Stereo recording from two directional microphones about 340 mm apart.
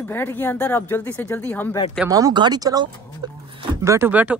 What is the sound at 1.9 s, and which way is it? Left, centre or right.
Speech, centre.